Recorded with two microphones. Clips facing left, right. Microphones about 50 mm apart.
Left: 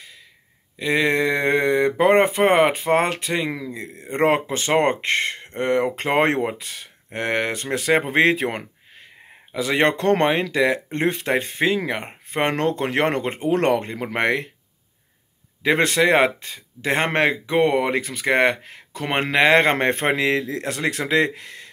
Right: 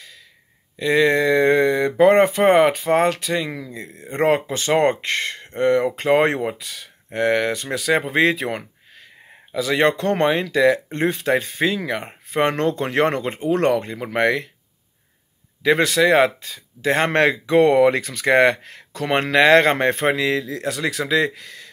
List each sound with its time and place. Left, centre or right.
0.7 s speech: left
15.6 s speech: left